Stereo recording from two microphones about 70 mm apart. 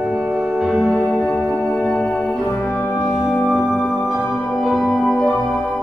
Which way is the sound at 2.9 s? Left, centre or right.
Left.